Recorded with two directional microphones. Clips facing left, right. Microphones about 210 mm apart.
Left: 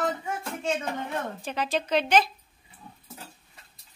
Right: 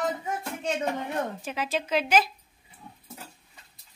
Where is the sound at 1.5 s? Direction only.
5° right (ahead or behind).